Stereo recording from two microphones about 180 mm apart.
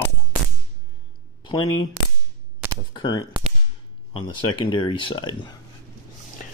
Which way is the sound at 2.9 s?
25° left (ahead or behind).